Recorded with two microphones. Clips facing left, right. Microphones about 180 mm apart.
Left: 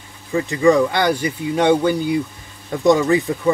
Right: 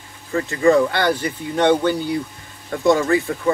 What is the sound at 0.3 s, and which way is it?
Speech, 15° left (ahead or behind).